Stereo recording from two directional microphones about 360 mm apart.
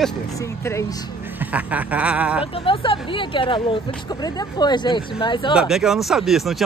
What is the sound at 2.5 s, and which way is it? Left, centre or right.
Speech, centre.